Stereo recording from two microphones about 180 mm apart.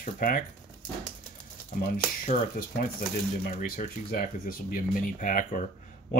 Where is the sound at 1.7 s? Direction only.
50° left (ahead or behind).